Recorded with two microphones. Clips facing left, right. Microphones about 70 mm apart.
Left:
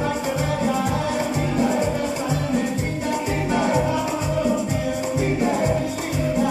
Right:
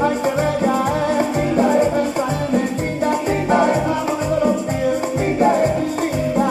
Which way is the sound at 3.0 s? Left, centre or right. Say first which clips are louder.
Right 7 dB; right.